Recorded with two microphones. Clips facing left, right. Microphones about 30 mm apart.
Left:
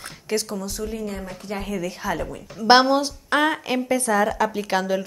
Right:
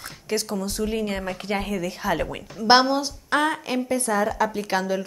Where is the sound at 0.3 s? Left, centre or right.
Centre.